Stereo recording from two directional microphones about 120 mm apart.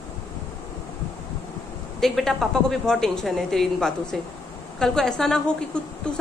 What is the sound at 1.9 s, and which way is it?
A woman's voice, centre (ahead or behind).